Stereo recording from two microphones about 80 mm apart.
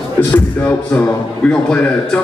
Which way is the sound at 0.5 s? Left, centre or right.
Left.